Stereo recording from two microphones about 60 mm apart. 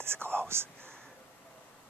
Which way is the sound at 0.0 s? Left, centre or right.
Right.